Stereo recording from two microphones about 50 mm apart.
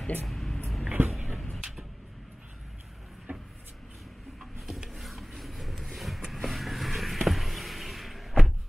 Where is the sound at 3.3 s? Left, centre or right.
Right.